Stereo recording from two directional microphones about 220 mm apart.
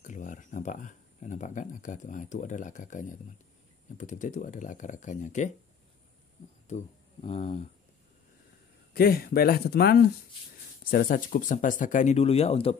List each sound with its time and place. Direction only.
0.0 s speech: 35° left (ahead or behind)
6.7 s speech: 30° left (ahead or behind)
8.9 s speech: 45° left (ahead or behind); by 12.7 s 25° left (ahead or behind)